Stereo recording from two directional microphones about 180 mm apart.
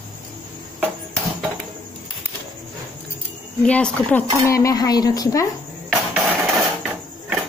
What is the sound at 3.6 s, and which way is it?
Speech, 5° left (ahead or behind).